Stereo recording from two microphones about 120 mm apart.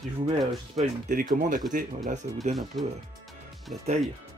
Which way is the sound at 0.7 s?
90° right.